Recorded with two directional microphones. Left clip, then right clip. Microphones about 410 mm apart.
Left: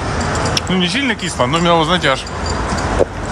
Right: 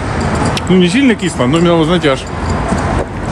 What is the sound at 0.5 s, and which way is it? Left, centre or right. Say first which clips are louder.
Speech: right 5 dB; centre.